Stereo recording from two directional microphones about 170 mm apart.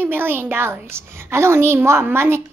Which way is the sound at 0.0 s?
10° right (ahead or behind).